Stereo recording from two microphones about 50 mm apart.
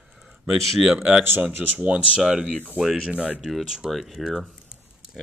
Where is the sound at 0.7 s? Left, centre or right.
Centre.